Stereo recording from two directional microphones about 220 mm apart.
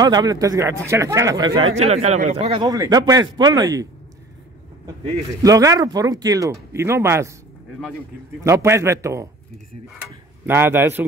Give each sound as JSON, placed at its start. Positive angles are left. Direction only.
{"t": 0.0, "sound": "speech", "side_deg": -15}
{"t": 5.4, "sound": "speech", "side_deg": -15}
{"t": 8.4, "sound": "speech", "side_deg": -10}